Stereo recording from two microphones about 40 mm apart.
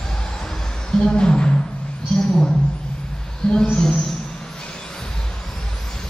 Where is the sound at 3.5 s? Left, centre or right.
Left.